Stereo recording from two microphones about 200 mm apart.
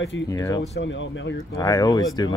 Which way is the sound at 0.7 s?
65° left (ahead or behind).